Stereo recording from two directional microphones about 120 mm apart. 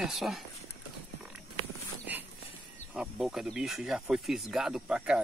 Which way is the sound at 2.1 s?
15° right (ahead or behind).